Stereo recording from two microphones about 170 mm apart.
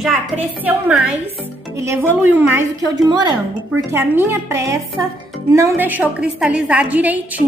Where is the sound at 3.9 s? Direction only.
15° right (ahead or behind).